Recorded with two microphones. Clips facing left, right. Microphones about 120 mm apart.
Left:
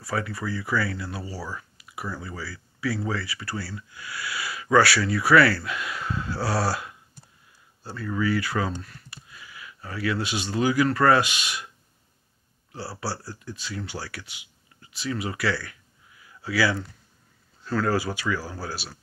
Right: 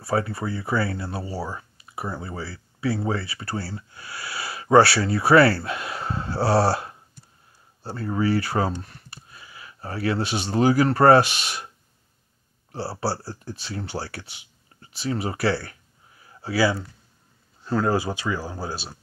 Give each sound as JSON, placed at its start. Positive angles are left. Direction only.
{"t": 0.0, "sound": "speech", "side_deg": -30}
{"t": 12.7, "sound": "speech", "side_deg": -30}